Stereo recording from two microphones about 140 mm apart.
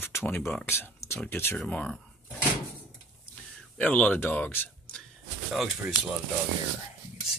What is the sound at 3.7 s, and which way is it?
Speech, 10° left (ahead or behind).